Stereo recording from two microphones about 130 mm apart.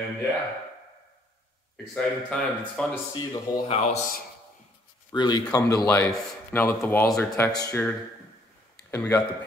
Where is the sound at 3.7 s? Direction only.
55° left (ahead or behind).